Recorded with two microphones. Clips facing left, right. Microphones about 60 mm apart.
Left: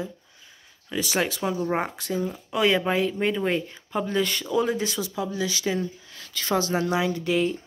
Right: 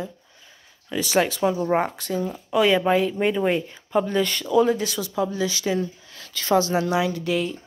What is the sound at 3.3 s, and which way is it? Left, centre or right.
Speech, centre.